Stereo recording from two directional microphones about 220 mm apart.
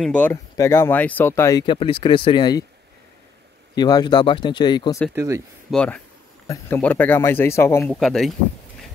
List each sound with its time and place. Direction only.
0.0 s speech: 5° left (ahead or behind)
3.7 s speech: 20° left (ahead or behind)
5.1 s speech: 15° right (ahead or behind)
5.7 s speech: 5° left (ahead or behind)